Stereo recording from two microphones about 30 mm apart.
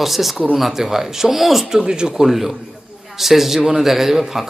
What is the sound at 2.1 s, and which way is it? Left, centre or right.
A man's voice, centre.